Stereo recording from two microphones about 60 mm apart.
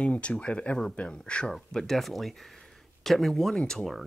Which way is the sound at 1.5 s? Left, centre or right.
Centre.